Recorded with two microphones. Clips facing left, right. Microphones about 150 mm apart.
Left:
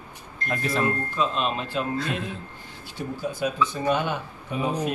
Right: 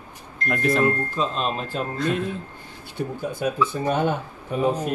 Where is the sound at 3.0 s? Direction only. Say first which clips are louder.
Right 2 dB; 55° right (ahead or behind).